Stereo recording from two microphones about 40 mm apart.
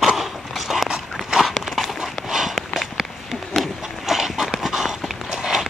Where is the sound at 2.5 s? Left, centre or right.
Centre.